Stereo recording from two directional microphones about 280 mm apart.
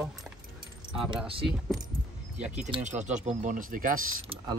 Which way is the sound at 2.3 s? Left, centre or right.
Centre.